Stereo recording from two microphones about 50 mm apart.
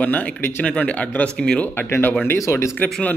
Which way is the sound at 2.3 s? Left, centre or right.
Left.